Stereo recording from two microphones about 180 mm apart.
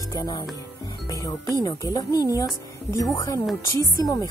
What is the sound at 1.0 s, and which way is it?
Music, 20° left (ahead or behind).